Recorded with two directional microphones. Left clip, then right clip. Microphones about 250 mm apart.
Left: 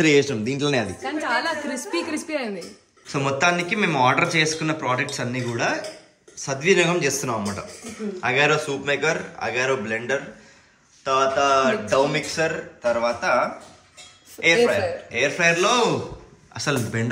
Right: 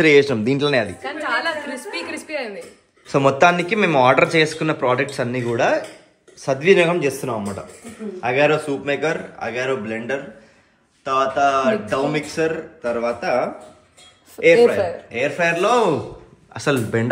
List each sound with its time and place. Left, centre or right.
0.0 s speech: centre
1.0 s a sound: left
3.1 s speech: centre